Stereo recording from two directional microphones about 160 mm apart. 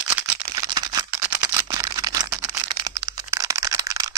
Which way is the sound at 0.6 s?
25° right (ahead or behind).